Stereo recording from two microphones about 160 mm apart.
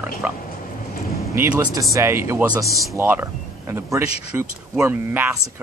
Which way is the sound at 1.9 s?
20° right (ahead or behind).